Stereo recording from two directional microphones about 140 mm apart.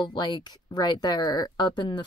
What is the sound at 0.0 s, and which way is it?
A woman's voice, 30° left (ahead or behind).